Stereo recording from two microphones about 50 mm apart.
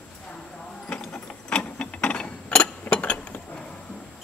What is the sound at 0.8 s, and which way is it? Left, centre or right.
Mechanisms, centre.